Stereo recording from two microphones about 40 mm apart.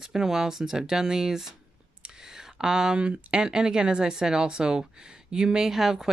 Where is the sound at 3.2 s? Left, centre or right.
Right.